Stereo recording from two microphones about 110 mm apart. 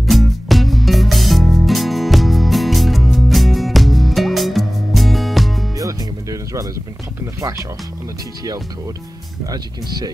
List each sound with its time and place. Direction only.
0.0 s music: centre (ahead or behind)
5.8 s music: 30° right (ahead or behind)
9.5 s speech: 35° right (ahead or behind)